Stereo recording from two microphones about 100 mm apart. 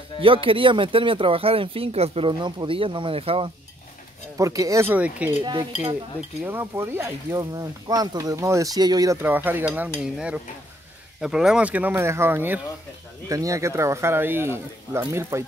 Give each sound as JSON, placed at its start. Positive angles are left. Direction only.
{"t": 0.2, "sound": "speech", "side_deg": -60}
{"t": 4.4, "sound": "speech", "side_deg": -35}
{"t": 4.8, "sound": "speech", "side_deg": -15}
{"t": 6.4, "sound": "speech", "side_deg": -20}
{"t": 7.3, "sound": "speech", "side_deg": -40}
{"t": 9.2, "sound": "speech", "side_deg": -20}
{"t": 13.3, "sound": "speech", "side_deg": -35}